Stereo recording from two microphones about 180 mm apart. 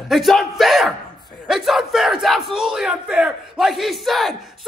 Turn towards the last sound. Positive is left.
turn(degrees=0)  # may be behind; listen again after turning